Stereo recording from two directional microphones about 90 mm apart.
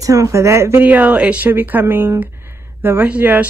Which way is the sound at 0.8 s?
15° right (ahead or behind).